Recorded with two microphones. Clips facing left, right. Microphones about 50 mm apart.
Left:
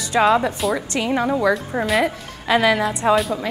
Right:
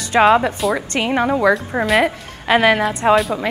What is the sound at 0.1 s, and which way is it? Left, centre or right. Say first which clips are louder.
A woman's voice: right 4 dB; right.